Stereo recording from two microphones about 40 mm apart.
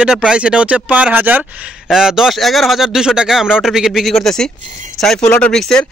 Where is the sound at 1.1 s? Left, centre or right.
Right.